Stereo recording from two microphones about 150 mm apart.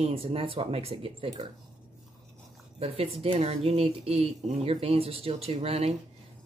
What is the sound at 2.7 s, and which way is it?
Speech, 40° right (ahead or behind).